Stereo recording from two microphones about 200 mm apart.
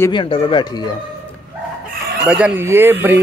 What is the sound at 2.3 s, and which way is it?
Speech, 10° right (ahead or behind).